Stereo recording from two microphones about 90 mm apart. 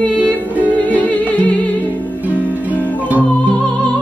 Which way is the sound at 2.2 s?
20° right (ahead or behind).